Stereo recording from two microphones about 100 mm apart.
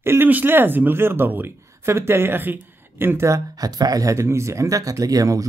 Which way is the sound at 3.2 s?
35° right (ahead or behind).